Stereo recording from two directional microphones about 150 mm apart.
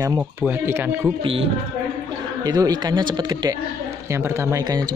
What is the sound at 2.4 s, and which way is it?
Speech, 25° right (ahead or behind).